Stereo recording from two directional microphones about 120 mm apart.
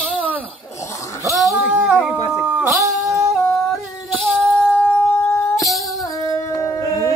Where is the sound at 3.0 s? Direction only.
Centre (ahead or behind).